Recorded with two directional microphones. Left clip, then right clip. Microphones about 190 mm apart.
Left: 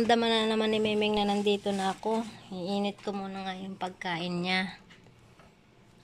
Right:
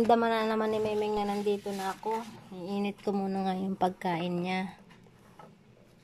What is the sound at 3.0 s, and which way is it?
Speech, 25° right (ahead or behind).